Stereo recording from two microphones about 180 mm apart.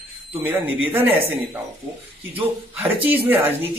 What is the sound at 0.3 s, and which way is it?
Speech, 10° right (ahead or behind).